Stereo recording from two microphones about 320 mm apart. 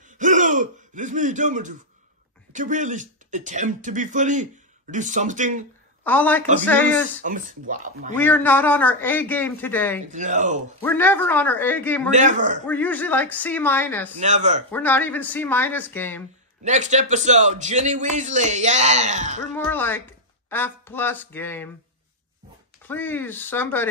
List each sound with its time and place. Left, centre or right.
0.2 s a sound: right
2.5 s a man's voice: right
6.0 s a man's voice: centre
7.2 s a man's voice: right
8.2 s a man's voice: centre
10.1 s a man's voice: right
10.8 s a man's voice: centre
12.1 s a man's voice: right
12.6 s a man's voice: centre
14.2 s a man's voice: right
14.7 s a man's voice: centre
16.6 s a man's voice: right
19.5 s speech: centre
22.8 s speech: centre